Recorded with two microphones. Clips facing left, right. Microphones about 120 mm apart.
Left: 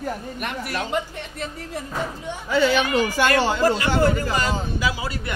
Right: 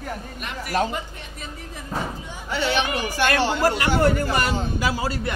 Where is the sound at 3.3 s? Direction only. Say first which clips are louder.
Right 1 dB; 60° right (ahead or behind).